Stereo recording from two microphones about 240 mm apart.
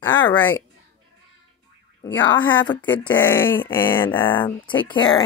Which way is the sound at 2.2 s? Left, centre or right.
Centre.